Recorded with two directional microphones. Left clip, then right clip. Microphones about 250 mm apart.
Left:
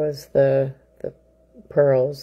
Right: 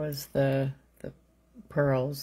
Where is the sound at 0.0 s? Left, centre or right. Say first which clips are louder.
Left 10 dB; centre.